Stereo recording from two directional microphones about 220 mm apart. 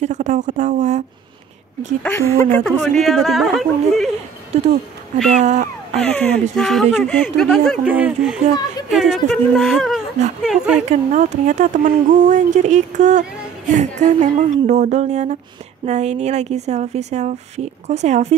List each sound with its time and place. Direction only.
0.0 s speech: 35° right (ahead or behind)
2.0 s speech: 10° left (ahead or behind)
2.5 s speech: centre (ahead or behind)
4.5 s speech: 30° right (ahead or behind)
6.0 s speech: 5° left (ahead or behind)
10.9 s speech: 35° right (ahead or behind)